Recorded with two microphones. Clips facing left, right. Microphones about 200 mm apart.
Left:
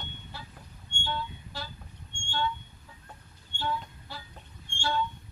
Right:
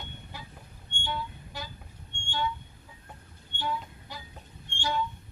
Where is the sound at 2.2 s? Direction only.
15° right (ahead or behind).